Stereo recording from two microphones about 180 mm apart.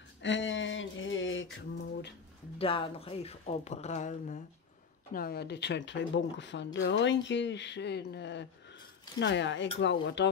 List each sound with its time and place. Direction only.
0.2 s a sound: 90° left
2.6 s speech: 30° left (ahead or behind)
5.1 s speech: 60° left (ahead or behind); by 10.2 s 80° left